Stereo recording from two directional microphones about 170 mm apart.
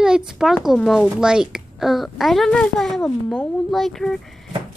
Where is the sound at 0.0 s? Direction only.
5° right (ahead or behind).